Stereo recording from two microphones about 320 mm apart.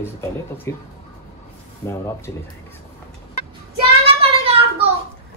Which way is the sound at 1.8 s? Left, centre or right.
Centre.